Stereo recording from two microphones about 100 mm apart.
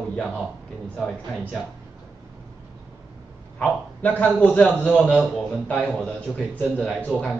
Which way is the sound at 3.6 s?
15° left (ahead or behind).